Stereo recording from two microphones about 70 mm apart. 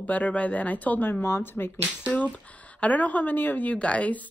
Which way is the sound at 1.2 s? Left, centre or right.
Left.